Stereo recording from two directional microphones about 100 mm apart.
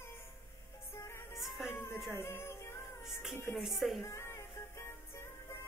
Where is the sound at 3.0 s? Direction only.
Centre (ahead or behind).